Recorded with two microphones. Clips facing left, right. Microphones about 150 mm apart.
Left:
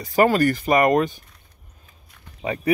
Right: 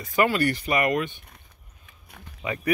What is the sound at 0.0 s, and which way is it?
Speech, 40° left (ahead or behind).